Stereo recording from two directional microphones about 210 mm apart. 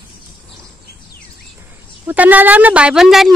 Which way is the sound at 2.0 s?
5° right (ahead or behind).